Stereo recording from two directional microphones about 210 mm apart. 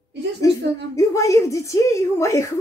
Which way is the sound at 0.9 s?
15° left (ahead or behind).